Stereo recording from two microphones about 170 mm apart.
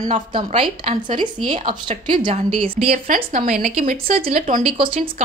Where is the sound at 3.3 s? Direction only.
50° right (ahead or behind).